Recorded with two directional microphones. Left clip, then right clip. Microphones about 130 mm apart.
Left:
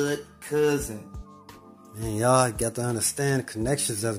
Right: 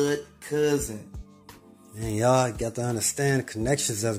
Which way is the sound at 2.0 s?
Centre (ahead or behind).